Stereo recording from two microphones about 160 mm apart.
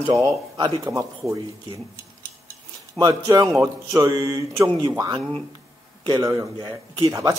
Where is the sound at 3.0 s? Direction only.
25° right (ahead or behind).